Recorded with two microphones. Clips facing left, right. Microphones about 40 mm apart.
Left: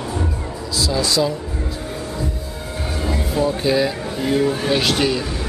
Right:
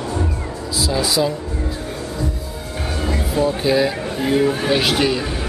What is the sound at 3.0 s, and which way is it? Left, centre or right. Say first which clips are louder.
Speech: right 1 dB; centre.